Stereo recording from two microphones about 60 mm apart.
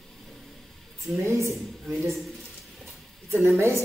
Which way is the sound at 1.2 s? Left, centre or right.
Right.